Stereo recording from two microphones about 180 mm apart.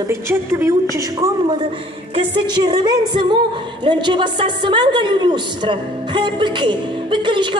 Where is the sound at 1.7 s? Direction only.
30° right (ahead or behind).